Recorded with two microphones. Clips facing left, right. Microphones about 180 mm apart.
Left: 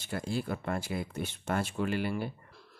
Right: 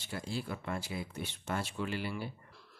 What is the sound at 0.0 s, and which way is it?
Speech, 50° left (ahead or behind).